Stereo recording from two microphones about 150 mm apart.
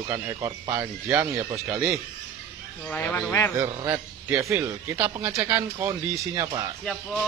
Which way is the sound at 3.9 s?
15° right (ahead or behind).